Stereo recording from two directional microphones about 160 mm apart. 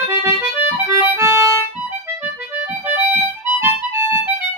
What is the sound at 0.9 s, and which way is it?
Music, 15° right (ahead or behind).